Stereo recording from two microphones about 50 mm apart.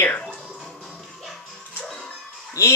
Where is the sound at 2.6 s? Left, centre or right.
Left.